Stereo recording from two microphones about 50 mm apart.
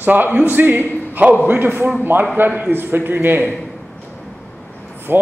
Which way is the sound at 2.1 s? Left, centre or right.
Right.